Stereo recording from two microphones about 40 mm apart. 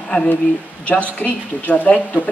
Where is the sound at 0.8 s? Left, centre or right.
Left.